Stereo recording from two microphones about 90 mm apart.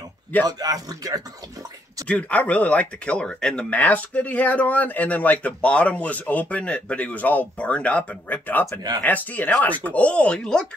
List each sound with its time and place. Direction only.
0.5 s speech: 45° right (ahead or behind)
2.0 s speech: 15° left (ahead or behind)